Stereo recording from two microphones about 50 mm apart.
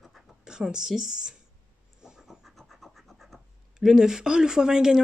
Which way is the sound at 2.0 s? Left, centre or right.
Centre.